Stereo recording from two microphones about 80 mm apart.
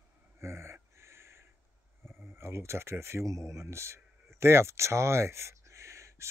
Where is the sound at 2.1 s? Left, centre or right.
Right.